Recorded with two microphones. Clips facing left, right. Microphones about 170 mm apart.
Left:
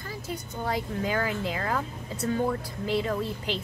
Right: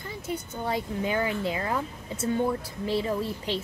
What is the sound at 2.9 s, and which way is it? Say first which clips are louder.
Speech: even; 25° right (ahead or behind).